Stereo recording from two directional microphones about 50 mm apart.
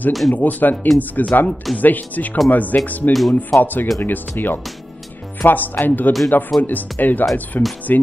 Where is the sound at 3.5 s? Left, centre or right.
Left.